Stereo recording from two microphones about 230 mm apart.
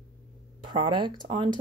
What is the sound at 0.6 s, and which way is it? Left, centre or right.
Speech, centre.